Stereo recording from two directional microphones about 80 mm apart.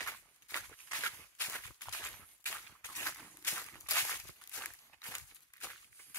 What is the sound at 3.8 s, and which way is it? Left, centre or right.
Walk, left.